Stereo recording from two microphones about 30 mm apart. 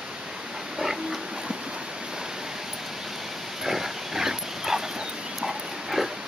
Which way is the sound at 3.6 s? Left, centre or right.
Centre.